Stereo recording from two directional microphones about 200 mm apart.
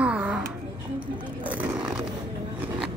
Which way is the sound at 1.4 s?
5° right (ahead or behind).